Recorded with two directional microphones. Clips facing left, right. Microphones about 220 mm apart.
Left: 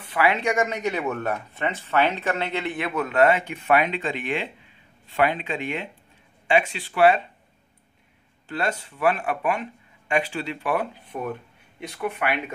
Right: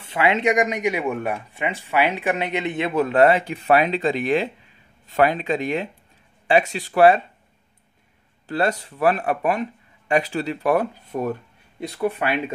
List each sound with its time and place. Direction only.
0.0 s speech: 25° right (ahead or behind); by 7.2 s 40° right (ahead or behind)
8.5 s speech: 35° right (ahead or behind)